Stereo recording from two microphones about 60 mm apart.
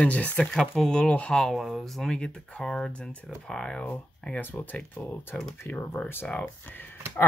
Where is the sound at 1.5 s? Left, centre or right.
Centre.